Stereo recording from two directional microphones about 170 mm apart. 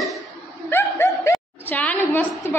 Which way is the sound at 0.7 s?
15° left (ahead or behind).